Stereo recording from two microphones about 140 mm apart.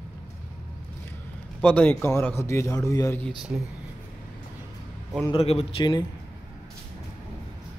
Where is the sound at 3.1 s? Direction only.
5° left (ahead or behind).